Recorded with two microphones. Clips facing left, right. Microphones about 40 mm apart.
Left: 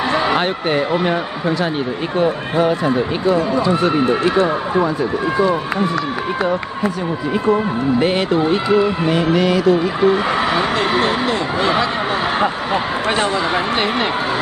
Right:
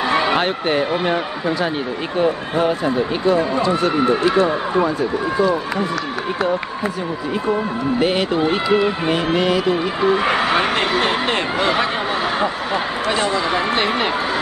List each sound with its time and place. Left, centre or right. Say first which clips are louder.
0.4 s a man's voice: left 1 dB; centre
4.0 s speech: even; left
8.6 s speech: left 2 dB; right
12.4 s speech: left 2 dB; left